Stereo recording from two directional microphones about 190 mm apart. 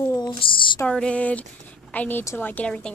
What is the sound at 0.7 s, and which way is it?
A woman's voice, 5° left (ahead or behind).